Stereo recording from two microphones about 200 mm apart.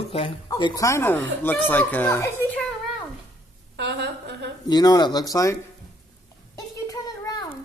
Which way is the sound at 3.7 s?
60° right (ahead or behind).